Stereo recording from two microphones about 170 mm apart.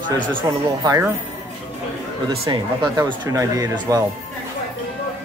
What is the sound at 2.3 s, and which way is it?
Speech, 25° right (ahead or behind).